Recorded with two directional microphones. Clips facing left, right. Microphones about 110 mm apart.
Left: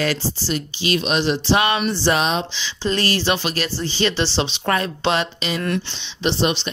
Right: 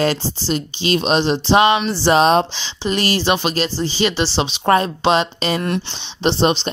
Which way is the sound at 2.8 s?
15° right (ahead or behind).